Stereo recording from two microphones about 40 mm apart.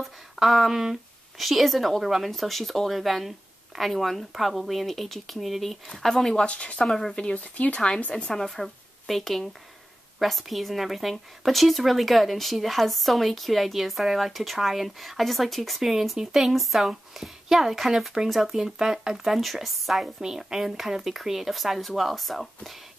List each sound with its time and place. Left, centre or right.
0.0 s a woman's voice: centre
6.3 s speech: left
6.9 s speech: centre
7.3 s speech: left
8.3 s a woman's voice: centre
20.2 s a woman's voice: centre